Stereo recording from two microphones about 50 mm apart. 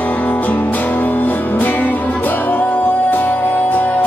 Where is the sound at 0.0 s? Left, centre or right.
Left.